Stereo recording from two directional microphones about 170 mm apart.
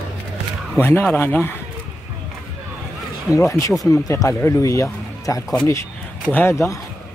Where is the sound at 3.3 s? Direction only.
20° left (ahead or behind).